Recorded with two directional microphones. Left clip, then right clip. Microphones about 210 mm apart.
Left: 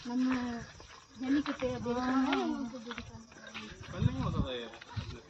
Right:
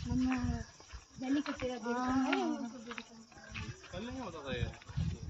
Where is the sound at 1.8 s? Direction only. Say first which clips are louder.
Left 1 dB; 10° left (ahead or behind).